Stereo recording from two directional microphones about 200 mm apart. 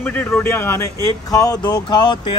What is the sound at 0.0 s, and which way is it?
Speech, 10° left (ahead or behind).